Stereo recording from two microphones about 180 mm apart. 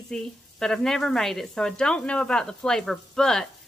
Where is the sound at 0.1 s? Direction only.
5° left (ahead or behind).